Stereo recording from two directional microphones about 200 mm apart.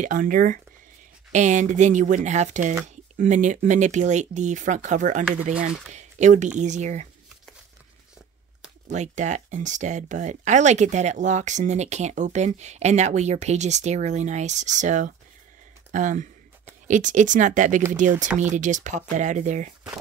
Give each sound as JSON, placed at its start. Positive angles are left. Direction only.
{"t": 0.0, "sound": "speech", "side_deg": -40}
{"t": 5.9, "sound": "a sound", "side_deg": -35}
{"t": 6.6, "sound": "speech", "side_deg": -35}
{"t": 8.9, "sound": "speech", "side_deg": -35}